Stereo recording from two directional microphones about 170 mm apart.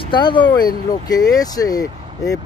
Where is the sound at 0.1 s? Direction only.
25° left (ahead or behind).